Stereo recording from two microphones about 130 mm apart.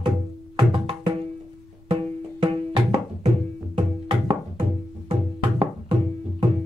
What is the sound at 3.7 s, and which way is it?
Music, 45° right (ahead or behind).